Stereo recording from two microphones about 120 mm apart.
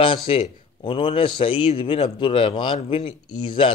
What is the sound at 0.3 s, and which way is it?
A man's voice, 45° left (ahead or behind).